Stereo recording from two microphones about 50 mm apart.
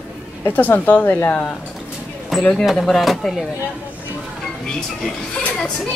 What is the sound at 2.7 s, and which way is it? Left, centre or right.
Speech, centre.